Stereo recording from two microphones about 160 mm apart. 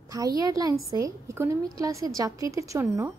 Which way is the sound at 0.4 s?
25° right (ahead or behind).